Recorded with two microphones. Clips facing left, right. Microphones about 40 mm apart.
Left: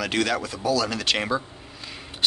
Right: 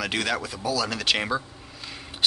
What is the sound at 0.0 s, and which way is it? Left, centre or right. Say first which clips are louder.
Speech: left 2 dB; centre.